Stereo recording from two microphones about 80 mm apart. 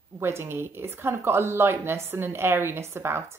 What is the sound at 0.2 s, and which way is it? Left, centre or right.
Speech, right.